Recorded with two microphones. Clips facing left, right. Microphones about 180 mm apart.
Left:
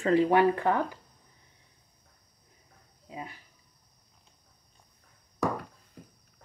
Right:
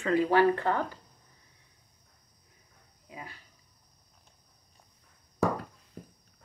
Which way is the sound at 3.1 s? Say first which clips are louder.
Left 4 dB; 25° left (ahead or behind).